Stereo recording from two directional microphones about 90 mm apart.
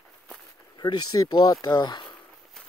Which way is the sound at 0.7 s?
50° left (ahead or behind).